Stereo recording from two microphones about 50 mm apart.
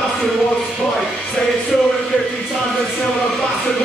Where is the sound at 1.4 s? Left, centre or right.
Centre.